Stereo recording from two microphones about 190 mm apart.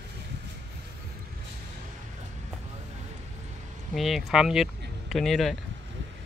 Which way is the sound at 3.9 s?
Centre (ahead or behind).